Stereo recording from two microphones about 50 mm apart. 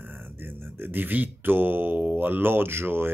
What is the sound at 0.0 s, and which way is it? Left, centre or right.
Mantra, right.